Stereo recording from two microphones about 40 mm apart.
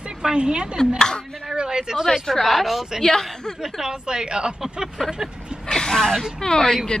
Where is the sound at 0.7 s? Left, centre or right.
Centre.